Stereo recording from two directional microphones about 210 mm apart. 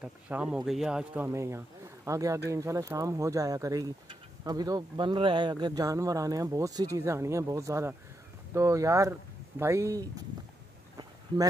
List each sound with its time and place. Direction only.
0.0 s speech: 5° right (ahead or behind)